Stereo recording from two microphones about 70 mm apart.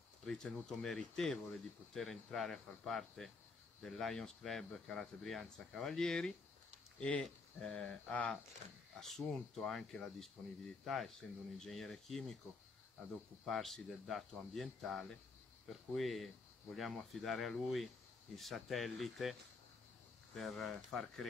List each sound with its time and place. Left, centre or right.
0.2 s speech: centre
7.0 s speech: centre
9.0 s speech: centre
13.5 s speech: centre
20.3 s speech: centre